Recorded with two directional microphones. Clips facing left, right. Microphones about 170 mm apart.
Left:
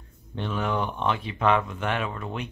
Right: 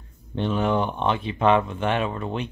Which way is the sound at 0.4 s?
25° right (ahead or behind).